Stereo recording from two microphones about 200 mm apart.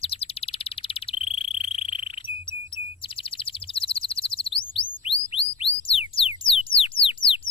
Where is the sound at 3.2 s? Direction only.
25° left (ahead or behind).